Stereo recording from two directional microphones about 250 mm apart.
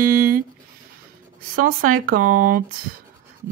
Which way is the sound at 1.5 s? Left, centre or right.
Right.